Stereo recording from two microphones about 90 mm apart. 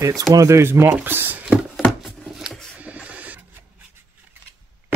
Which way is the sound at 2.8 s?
15° right (ahead or behind).